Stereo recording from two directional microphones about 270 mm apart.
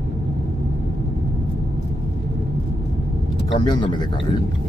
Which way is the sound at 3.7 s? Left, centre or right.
Centre.